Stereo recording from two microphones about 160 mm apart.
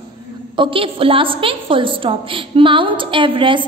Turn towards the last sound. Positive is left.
turn(degrees=-30)  # may be behind; listen again after turning